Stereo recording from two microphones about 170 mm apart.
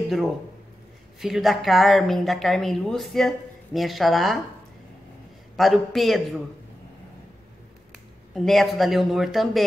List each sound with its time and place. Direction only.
1.2 s speech: centre (ahead or behind)
5.6 s speech: centre (ahead or behind)
8.4 s speech: centre (ahead or behind)